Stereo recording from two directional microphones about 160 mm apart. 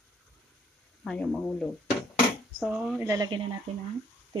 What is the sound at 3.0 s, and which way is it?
Speech, 20° right (ahead or behind).